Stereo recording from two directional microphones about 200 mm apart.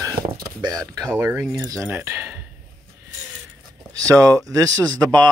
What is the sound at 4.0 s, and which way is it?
Speech, 15° right (ahead or behind).